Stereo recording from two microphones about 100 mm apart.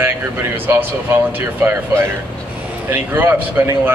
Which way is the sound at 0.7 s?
20° right (ahead or behind).